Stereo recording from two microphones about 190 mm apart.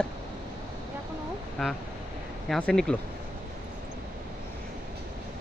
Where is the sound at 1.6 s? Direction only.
Centre (ahead or behind).